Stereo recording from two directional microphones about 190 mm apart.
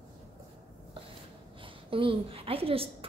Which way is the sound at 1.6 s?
30° right (ahead or behind).